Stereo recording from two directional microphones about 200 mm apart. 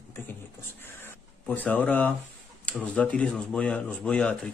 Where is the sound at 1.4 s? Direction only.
5° left (ahead or behind).